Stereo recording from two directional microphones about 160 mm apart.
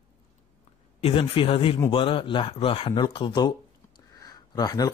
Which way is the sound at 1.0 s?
35° left (ahead or behind).